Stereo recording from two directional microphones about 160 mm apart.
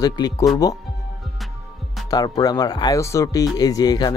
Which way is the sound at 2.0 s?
25° left (ahead or behind).